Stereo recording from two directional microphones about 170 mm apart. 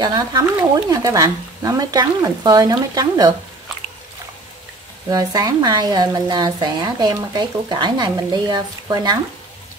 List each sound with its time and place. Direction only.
0.0 s speech: 25° right (ahead or behind)
5.1 s speech: 20° right (ahead or behind)